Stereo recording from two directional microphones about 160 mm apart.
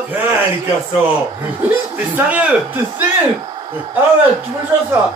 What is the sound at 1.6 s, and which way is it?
Speech, 10° right (ahead or behind).